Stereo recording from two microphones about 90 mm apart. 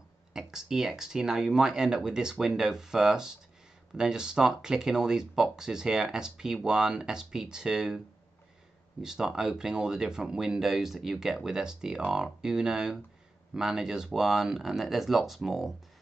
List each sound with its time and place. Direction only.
0.3 s speech: 5° right (ahead or behind)
9.0 s speech: 5° right (ahead or behind)